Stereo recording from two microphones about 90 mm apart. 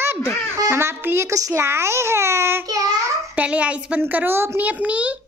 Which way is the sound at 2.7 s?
40° right (ahead or behind).